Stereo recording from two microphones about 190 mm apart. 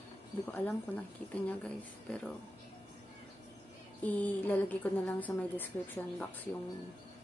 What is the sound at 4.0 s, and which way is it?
A woman's voice, 10° left (ahead or behind).